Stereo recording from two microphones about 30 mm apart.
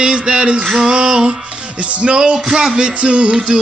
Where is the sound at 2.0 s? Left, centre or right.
Right.